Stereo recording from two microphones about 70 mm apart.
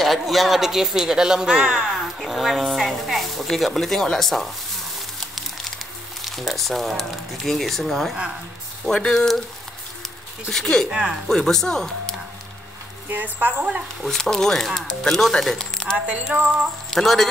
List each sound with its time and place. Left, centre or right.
0.0 s speech: centre
1.9 s speech: centre
6.2 s speech: centre
10.5 s speech: centre
10.9 s speech: centre
11.2 s speech: centre
13.1 s a woman's voice: right
14.0 s speech: centre
16.1 s a woman's voice: centre
16.9 s speech: centre